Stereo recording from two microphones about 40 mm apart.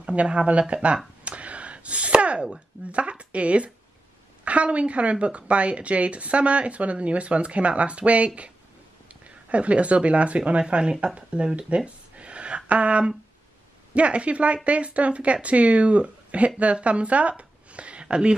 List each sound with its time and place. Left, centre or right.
0.1 s speech: right
1.2 s a sound: right
2.9 s speech: right